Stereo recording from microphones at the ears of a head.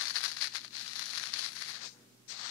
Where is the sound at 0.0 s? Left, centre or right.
Left.